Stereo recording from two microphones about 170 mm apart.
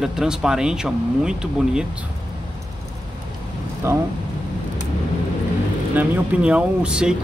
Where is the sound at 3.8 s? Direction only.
15° right (ahead or behind).